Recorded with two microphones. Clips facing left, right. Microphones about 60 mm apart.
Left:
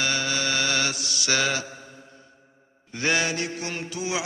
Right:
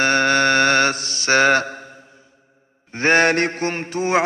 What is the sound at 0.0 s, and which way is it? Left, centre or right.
Mantra, right.